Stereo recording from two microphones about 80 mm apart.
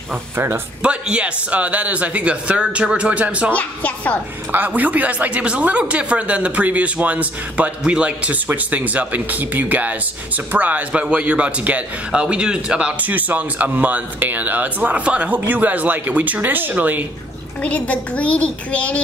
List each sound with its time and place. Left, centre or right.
0.8 s speech: centre
3.5 s a child's voice: centre
4.5 s speech: right
13.0 s speech: right
17.6 s a child's voice: centre